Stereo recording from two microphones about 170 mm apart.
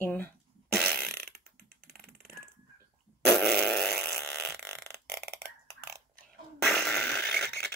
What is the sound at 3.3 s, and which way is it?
Fart, centre (ahead or behind).